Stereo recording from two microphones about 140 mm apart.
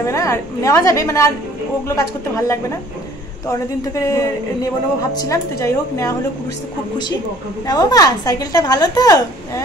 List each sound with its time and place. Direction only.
0.0 s a woman's voice: 20° left (ahead or behind)
5.3 s a woman's voice: 20° left (ahead or behind)
7.6 s a woman's voice: 25° left (ahead or behind)